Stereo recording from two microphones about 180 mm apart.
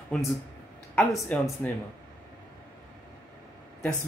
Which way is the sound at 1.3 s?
5° left (ahead or behind).